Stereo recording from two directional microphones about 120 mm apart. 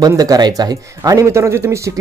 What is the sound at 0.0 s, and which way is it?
Speech, 35° right (ahead or behind).